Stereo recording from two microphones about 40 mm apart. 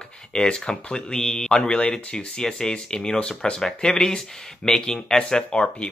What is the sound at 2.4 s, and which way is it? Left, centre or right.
Speech, centre.